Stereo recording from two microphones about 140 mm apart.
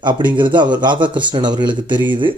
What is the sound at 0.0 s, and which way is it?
Speech, 35° right (ahead or behind).